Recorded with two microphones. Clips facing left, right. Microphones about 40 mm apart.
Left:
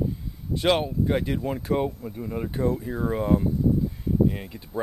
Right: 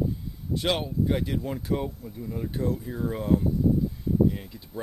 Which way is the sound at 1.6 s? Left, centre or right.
Left.